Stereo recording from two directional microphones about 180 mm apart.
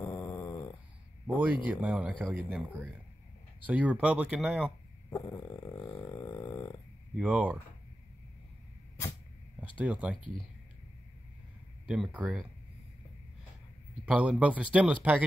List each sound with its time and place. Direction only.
0.0 s dog: 15° left (ahead or behind)
1.2 s speech: 10° right (ahead or behind)
5.1 s snoring: 20° left (ahead or behind)
7.2 s speech: 5° right (ahead or behind)
9.8 s speech: 10° right (ahead or behind)
11.9 s speech: 5° right (ahead or behind)
14.0 s speech: 5° right (ahead or behind)